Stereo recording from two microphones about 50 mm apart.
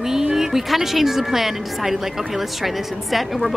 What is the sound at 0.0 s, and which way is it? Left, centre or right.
A woman's voice, centre.